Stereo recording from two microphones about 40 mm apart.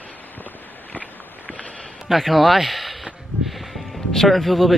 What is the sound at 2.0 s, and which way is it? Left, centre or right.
Speech, centre.